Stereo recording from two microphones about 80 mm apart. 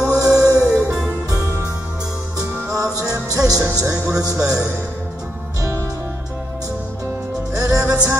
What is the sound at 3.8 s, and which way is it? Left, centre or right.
Speech, right.